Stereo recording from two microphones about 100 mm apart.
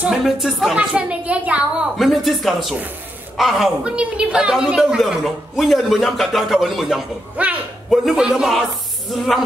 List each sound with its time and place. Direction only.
0.0 s a woman's voice: 5° right (ahead or behind)
0.7 s a woman's voice: 15° right (ahead or behind)
2.0 s a woman's voice: centre (ahead or behind)
7.4 s a woman's voice: 15° right (ahead or behind)
7.9 s a woman's voice: 5° right (ahead or behind)